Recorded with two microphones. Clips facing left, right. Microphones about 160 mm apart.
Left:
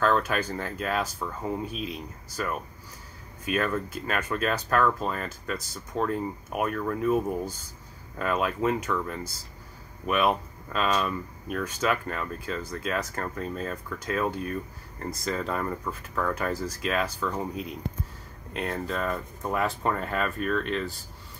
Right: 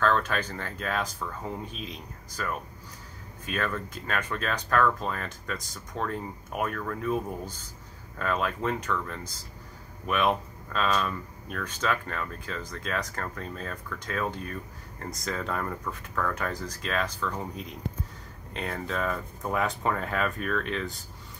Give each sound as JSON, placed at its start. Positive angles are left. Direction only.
{"t": 0.0, "sound": "speech", "side_deg": 10}